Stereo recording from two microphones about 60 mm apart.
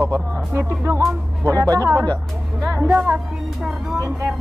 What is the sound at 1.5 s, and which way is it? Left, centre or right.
Speech, right.